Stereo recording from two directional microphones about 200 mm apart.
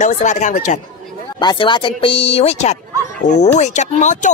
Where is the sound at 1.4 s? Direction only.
20° left (ahead or behind); by 4.3 s 35° left (ahead or behind).